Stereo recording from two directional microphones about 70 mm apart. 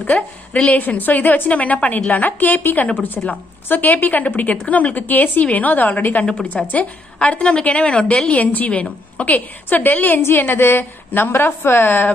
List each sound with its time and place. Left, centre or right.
0.0 s a woman's voice: left